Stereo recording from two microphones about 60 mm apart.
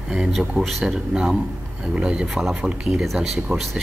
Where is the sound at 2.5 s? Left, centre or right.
Centre.